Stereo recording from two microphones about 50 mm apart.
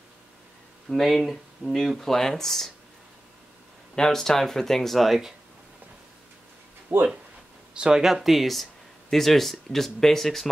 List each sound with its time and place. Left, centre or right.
0.8 s speech: centre
3.9 s speech: centre
6.9 s speech: right
7.7 s speech: centre
8.0 s speech: centre